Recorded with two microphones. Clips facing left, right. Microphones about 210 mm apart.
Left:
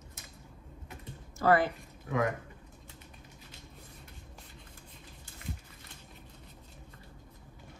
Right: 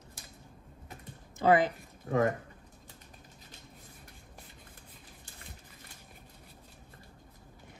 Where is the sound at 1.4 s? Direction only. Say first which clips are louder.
Right 1 dB; 20° right (ahead or behind).